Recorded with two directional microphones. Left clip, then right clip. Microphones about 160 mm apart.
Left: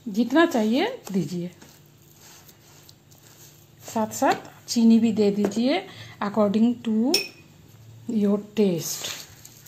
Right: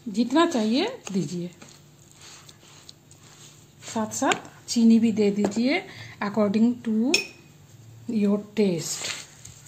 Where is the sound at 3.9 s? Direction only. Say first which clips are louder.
Left 2 dB; 15° left (ahead or behind).